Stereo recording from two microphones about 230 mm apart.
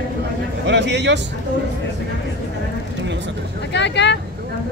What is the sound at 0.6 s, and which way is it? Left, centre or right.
Speech, right.